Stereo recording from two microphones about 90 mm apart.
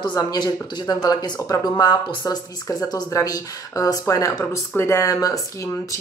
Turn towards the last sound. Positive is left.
turn(degrees=40)  # may be behind; listen again after turning